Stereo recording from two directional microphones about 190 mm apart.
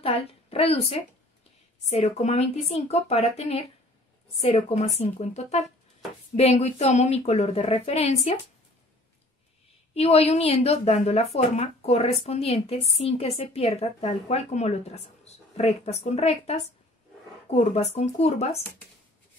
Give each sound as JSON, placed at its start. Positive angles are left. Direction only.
{"t": 0.0, "sound": "a woman's voice", "side_deg": 30}
{"t": 9.9, "sound": "speech", "side_deg": 30}